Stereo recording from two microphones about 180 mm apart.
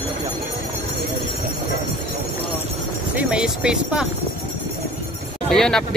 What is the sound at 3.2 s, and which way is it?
Speech, 5° right (ahead or behind).